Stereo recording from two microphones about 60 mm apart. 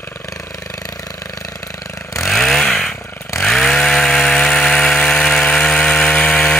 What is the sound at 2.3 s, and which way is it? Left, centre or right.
Chainsaw, centre.